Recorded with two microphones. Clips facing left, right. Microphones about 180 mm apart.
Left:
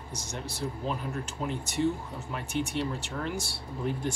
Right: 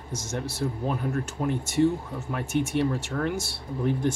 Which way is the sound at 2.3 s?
55° right (ahead or behind).